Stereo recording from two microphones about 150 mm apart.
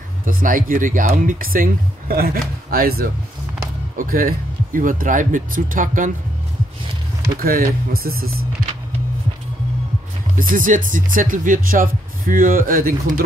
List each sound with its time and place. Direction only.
0.2 s speech: 65° right (ahead or behind); by 3.1 s 90° right
3.9 s speech: 65° right (ahead or behind)
7.3 s speech: 70° right (ahead or behind)
10.3 s speech: 65° right (ahead or behind)